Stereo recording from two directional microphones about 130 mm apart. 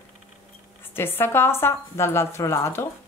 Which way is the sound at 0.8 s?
15° left (ahead or behind).